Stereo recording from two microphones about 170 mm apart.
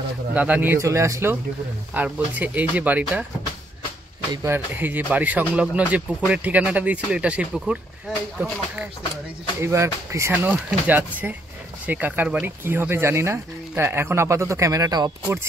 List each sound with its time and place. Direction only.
0.3 s speech: 10° right (ahead or behind)
4.3 s speech: 20° right (ahead or behind)
9.6 s speech: 15° right (ahead or behind)